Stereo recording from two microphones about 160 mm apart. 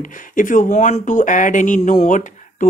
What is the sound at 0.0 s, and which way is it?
Speech, 55° left (ahead or behind).